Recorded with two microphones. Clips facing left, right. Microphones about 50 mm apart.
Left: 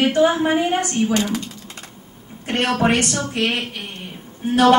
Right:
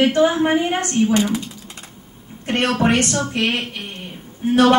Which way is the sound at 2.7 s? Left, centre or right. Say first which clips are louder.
Even; centre.